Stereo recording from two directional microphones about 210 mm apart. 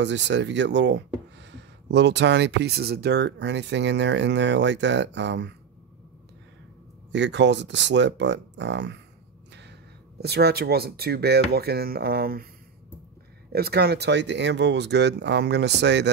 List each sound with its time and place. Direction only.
0.0 s speech: 55° right (ahead or behind)
7.1 s speech: 55° right (ahead or behind)
13.5 s speech: 50° right (ahead or behind)